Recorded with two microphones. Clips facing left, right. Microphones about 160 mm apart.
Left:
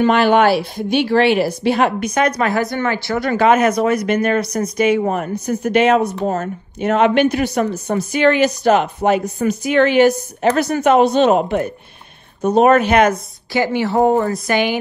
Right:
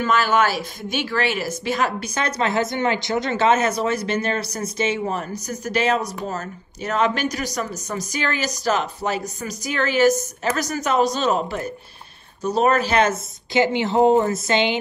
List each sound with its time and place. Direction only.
0.1 s speech: 40° right (ahead or behind)
2.0 s a woman's voice: 30° right (ahead or behind)
5.0 s speech: 55° left (ahead or behind)
5.3 s speech: 35° right (ahead or behind)
6.2 s speech: 40° left (ahead or behind)
6.8 s speech: 40° right (ahead or behind)
12.5 s a woman's voice: 35° right (ahead or behind)